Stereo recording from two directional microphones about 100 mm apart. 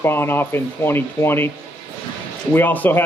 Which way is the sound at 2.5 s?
15° left (ahead or behind).